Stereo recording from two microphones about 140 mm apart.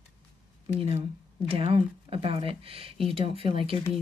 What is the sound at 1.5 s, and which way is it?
Speech, 45° right (ahead or behind).